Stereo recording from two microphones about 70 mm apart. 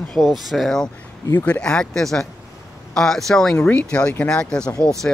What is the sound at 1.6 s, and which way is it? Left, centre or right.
Speech, centre.